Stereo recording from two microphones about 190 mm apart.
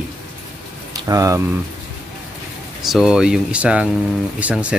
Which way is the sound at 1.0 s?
15° right (ahead or behind).